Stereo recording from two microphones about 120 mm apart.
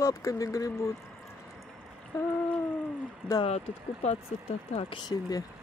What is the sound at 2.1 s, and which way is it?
Speech, 30° left (ahead or behind).